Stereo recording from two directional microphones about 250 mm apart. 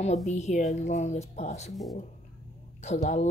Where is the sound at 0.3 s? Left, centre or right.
Left.